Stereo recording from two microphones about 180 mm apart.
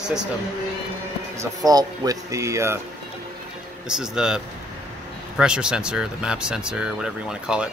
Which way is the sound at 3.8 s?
5° right (ahead or behind).